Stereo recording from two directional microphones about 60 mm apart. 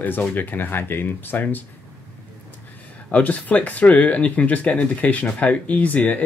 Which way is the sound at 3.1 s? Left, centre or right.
Left.